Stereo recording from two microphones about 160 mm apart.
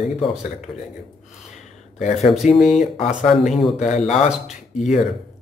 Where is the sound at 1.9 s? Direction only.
45° left (ahead or behind).